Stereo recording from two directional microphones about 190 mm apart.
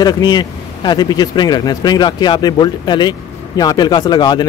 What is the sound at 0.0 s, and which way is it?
A man's voice, 20° left (ahead or behind).